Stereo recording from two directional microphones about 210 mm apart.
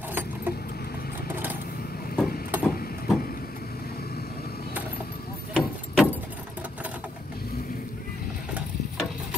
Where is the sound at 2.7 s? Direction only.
45° left (ahead or behind).